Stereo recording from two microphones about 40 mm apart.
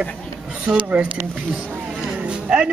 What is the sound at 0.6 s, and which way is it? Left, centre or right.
Speech, right.